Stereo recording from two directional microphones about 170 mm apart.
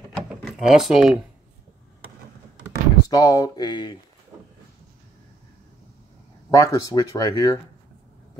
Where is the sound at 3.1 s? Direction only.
20° left (ahead or behind).